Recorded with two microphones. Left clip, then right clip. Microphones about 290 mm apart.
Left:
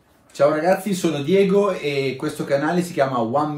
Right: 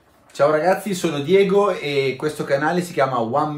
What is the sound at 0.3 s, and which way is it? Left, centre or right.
Speech, centre.